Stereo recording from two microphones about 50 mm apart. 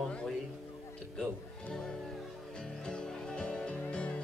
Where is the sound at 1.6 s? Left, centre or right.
Centre.